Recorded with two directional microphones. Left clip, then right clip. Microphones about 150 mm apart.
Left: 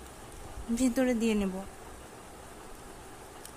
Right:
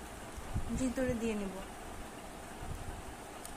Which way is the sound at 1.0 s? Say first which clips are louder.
Left 6 dB; 90° left.